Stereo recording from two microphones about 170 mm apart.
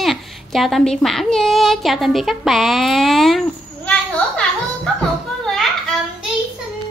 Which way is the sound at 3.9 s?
5° left (ahead or behind).